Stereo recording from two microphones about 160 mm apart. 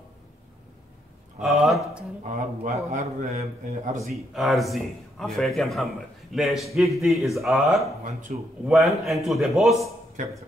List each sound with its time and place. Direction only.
1.4 s speech: centre (ahead or behind)
2.2 s a man's voice: 45° right (ahead or behind)
4.0 s a man's voice: centre (ahead or behind)
8.3 s speech: 55° right (ahead or behind)
8.6 s a man's voice: centre (ahead or behind)
10.2 s a man's voice: 50° right (ahead or behind)